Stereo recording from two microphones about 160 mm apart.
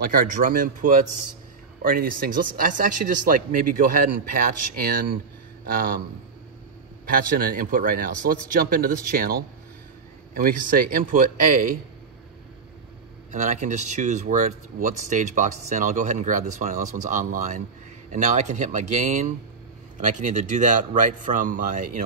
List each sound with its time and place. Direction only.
0.0 s speech: 65° right (ahead or behind)
7.1 s speech: 65° right (ahead or behind)
13.3 s speech: 50° right (ahead or behind)